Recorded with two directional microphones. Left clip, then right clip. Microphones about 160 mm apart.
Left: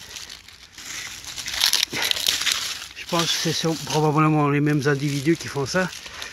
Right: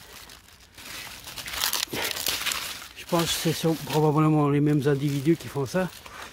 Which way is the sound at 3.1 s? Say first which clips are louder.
Left 3 dB; 25° right (ahead or behind).